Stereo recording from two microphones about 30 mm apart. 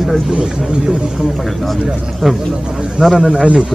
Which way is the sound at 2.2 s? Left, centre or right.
Centre.